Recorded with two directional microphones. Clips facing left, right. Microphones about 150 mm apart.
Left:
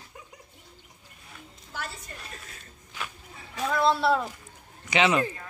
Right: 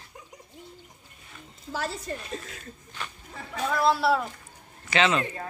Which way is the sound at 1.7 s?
35° right (ahead or behind).